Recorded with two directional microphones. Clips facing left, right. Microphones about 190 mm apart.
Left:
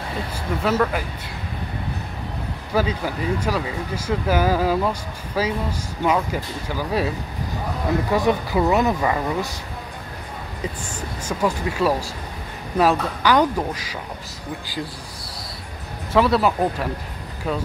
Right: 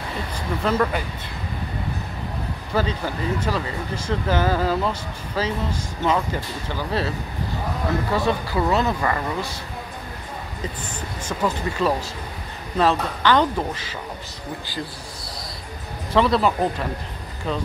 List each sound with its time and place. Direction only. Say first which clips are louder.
0.7 s speech: left 1 dB; 5° left (ahead or behind)
2.7 s speech: left 2 dB; 10° left (ahead or behind)
8.1 s speech: left 4 dB; 15° left (ahead or behind)
11.2 s speech: left 2 dB; 10° left (ahead or behind)
16.1 s speech: left 1 dB; 5° left (ahead or behind)